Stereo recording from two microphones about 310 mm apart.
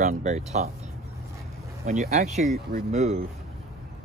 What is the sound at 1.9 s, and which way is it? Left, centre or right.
Speech, right.